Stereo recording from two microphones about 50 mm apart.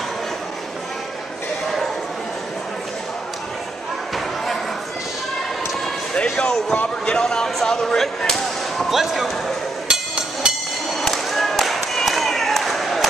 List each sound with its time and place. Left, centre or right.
6.3 s speech: centre
9.8 s hammer: centre
11.0 s a sound: centre